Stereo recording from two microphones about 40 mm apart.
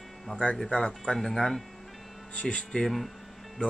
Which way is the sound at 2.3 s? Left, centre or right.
Left.